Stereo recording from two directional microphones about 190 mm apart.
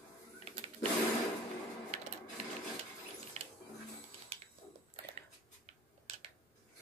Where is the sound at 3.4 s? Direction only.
35° right (ahead or behind).